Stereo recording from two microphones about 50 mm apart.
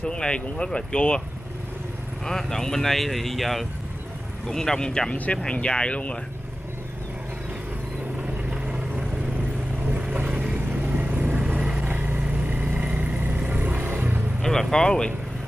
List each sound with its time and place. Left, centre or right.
0.0 s speech: left
2.2 s speech: centre
5.1 s speech: left
8.5 s vehicle: right
10.1 s vehicle: right
11.3 s vehicle: right
11.8 s vehicle: right
12.4 s vehicle: right
14.4 s speech: centre